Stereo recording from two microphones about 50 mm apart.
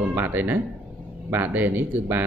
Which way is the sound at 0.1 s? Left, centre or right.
Right.